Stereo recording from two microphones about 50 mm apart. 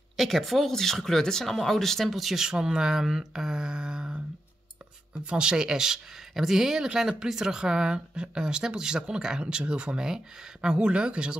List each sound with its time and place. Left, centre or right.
0.2 s speech: centre
5.2 s speech: centre